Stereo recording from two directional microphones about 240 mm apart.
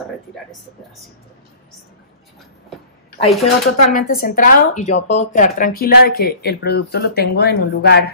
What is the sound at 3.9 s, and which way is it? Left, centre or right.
A woman's voice, left.